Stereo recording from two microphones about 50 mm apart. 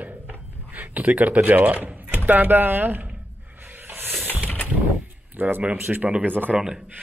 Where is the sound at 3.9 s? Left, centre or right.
Right.